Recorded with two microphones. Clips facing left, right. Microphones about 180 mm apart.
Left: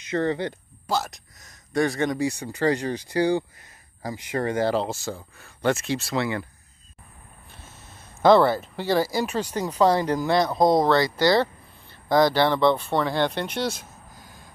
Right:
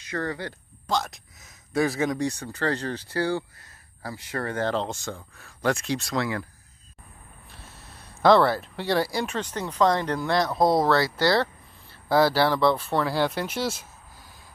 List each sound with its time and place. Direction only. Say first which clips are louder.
0.0 s speech: left 6 dB; 20° left (ahead or behind)
0.8 s speech: left 1 dB; 5° left (ahead or behind)
2.2 s speech: left 4 dB; 10° left (ahead or behind)
7.5 s speech: even; centre (ahead or behind)